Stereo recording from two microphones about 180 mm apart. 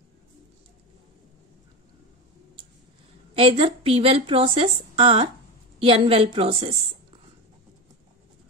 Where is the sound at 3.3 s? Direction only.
30° right (ahead or behind).